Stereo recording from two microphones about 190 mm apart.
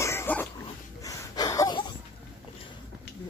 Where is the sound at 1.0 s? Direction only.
20° left (ahead or behind).